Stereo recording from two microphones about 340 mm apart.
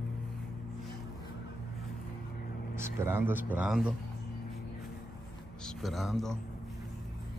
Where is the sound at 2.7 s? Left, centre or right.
Centre.